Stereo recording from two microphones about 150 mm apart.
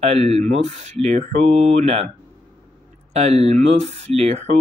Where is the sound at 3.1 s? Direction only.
45° right (ahead or behind).